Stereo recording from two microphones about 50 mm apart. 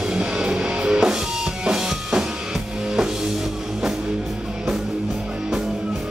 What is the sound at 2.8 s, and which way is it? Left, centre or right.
Music, centre.